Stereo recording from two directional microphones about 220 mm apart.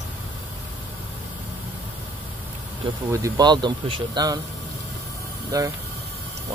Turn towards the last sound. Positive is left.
turn(degrees=-15)  # may be behind; listen again after turning